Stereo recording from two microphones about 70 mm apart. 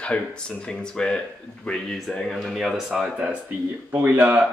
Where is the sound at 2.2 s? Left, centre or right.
Centre.